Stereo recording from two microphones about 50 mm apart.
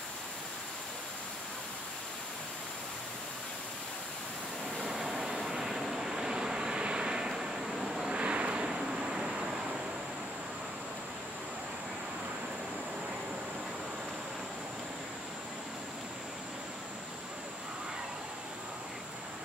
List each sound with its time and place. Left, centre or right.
4.7 s vehicle: centre
8.2 s vehicle: right